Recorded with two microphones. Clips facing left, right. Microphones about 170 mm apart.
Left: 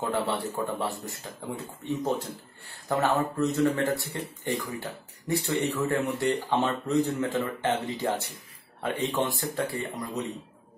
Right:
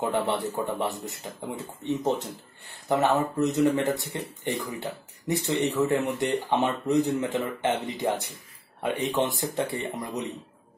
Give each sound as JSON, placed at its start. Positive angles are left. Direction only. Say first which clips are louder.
{"t": 0.0, "sound": "speech", "louder": "right 2 dB", "side_deg": -20}